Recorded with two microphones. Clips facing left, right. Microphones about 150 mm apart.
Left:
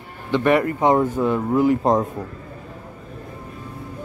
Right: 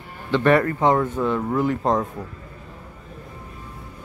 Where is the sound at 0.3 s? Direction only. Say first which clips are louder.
Even; 15° left (ahead or behind).